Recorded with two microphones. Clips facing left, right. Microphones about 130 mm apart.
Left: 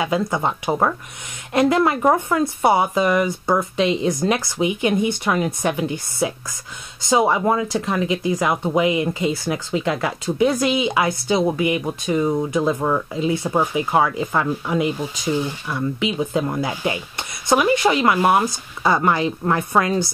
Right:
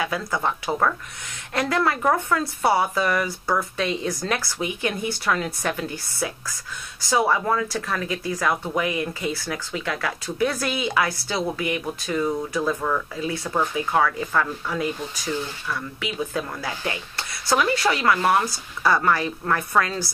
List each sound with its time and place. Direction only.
0.0 s speech: 20° left (ahead or behind)